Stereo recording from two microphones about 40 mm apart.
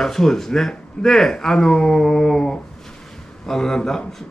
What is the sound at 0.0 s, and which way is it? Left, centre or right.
A man's voice, centre.